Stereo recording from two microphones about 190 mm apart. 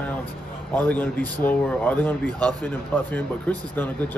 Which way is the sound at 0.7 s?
10° left (ahead or behind).